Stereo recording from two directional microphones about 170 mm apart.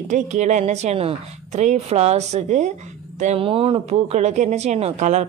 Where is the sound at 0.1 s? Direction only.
45° right (ahead or behind).